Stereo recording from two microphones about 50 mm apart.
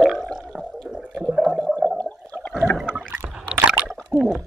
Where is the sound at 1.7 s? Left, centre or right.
Left.